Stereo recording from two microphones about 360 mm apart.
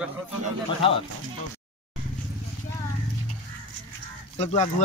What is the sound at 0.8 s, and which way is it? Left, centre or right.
Speech, centre.